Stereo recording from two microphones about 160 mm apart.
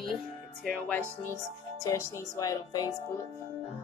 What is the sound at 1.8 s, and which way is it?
Speech, 20° left (ahead or behind).